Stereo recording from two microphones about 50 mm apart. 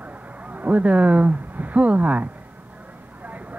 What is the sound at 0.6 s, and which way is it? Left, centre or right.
Speech, right.